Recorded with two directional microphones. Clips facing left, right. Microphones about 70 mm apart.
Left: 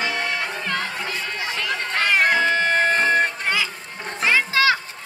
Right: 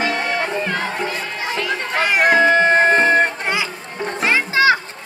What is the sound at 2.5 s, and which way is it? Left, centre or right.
Music, right.